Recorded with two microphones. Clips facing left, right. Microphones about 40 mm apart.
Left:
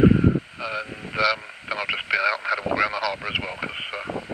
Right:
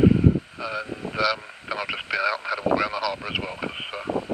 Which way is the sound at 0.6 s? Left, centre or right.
Centre.